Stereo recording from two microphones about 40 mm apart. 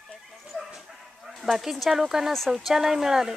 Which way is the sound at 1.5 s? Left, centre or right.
Centre.